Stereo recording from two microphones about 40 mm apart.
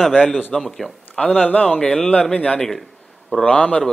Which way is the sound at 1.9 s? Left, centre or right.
Centre.